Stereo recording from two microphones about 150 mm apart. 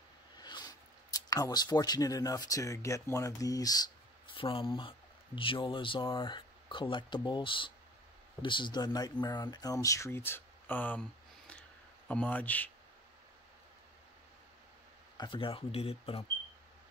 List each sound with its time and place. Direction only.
0.4 s speech: 25° left (ahead or behind); by 12.7 s 10° left (ahead or behind)
15.1 s speech: 35° left (ahead or behind)